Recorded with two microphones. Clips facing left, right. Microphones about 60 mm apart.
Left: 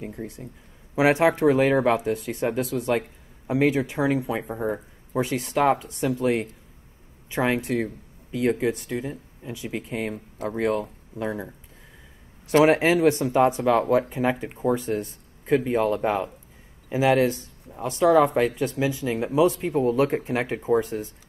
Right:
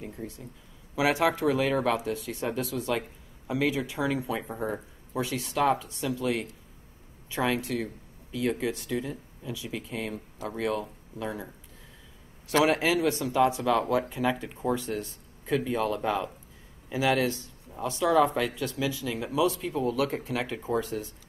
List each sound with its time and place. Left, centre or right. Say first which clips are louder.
0.0 s a man's voice: left 4 dB; left
4.5 s speech: left 5 dB; centre
5.1 s speech: left 6 dB; left
12.6 s speech: left 7 dB; left